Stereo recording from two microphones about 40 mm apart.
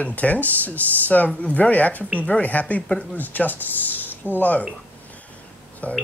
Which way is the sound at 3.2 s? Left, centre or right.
Left.